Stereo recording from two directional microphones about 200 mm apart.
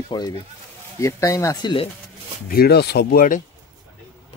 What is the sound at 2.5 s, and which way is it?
Speech, 50° left (ahead or behind).